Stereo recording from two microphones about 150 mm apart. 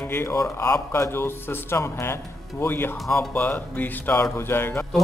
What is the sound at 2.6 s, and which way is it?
Speech, 15° left (ahead or behind).